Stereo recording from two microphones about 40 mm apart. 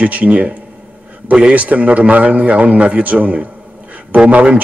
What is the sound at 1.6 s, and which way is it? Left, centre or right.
A man's voice, right.